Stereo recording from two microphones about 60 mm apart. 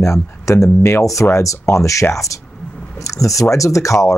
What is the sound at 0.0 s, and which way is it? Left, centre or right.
Speech, left.